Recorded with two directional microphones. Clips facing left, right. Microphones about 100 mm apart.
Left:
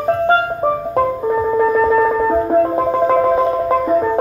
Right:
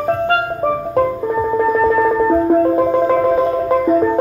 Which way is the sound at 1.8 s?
10° left (ahead or behind).